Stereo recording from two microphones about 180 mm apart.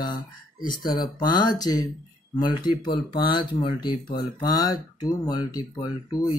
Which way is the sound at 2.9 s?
25° left (ahead or behind).